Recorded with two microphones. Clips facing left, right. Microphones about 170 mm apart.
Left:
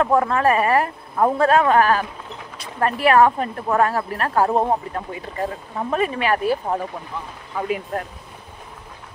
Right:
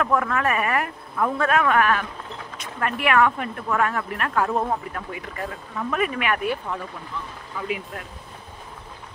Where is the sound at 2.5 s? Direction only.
35° left (ahead or behind).